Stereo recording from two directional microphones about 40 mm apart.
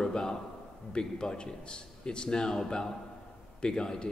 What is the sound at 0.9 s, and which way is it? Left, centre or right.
A man's voice, left.